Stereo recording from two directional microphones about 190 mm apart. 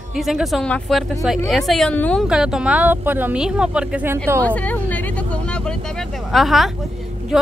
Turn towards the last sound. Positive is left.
turn(degrees=0)  # may be behind; listen again after turning